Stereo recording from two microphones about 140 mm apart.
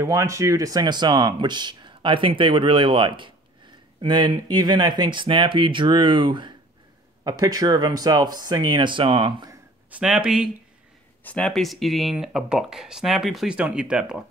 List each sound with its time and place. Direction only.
0.0 s speech: 20° right (ahead or behind)
9.8 s speech: 5° right (ahead or behind)
11.2 s speech: 5° left (ahead or behind)